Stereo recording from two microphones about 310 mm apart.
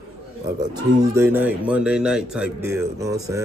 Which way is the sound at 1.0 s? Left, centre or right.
Centre.